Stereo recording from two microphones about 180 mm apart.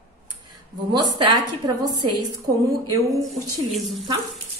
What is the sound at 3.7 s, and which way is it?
Speech, centre (ahead or behind).